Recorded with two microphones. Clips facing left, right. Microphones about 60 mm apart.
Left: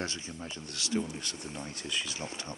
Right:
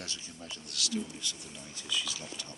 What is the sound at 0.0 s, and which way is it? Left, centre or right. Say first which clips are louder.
Speech: left 6 dB; left.